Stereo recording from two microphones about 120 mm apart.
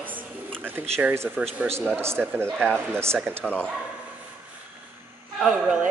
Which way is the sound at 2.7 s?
20° right (ahead or behind).